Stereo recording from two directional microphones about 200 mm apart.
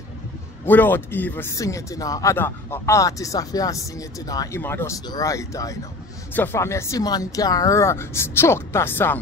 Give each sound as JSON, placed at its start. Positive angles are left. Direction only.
{"t": 0.7, "sound": "speech", "side_deg": 10}